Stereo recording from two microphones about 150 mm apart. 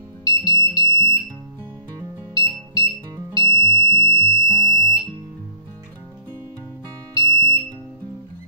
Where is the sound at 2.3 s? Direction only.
30° right (ahead or behind).